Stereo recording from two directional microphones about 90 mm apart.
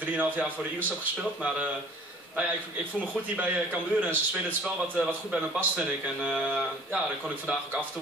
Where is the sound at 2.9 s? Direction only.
15° right (ahead or behind).